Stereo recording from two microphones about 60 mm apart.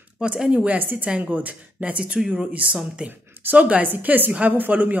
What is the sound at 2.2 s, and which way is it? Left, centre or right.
Speech, centre.